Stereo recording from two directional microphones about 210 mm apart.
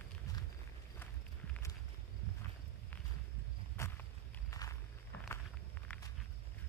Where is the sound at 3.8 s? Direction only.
15° left (ahead or behind).